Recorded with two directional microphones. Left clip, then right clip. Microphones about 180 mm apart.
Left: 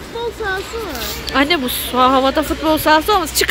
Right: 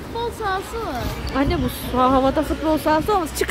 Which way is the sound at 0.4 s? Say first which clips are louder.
Left 2 dB; 25° right (ahead or behind).